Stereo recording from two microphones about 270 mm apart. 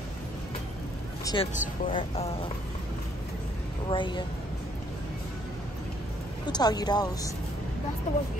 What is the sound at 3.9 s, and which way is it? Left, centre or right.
Speech, centre.